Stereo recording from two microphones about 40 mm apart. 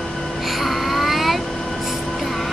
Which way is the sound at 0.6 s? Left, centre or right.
Centre.